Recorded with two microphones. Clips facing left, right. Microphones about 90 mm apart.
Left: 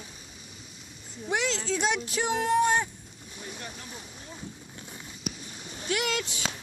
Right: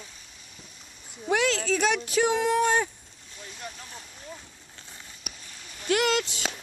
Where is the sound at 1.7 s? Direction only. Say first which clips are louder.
Right 3 dB; 70° right (ahead or behind); by 2.9 s 90° right.